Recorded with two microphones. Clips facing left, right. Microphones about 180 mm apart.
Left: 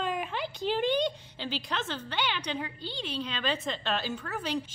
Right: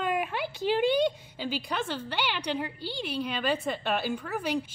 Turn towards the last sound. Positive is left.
turn(degrees=-10)  # may be behind; listen again after turning